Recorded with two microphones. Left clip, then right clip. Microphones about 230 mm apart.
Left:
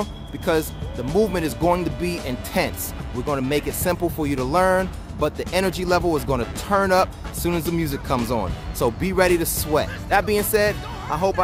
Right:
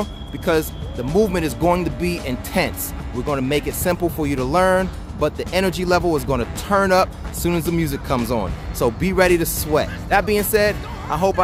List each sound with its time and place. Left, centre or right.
0.0 s speech: centre